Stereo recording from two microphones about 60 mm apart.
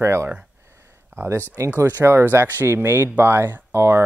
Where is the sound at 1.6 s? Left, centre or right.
Right.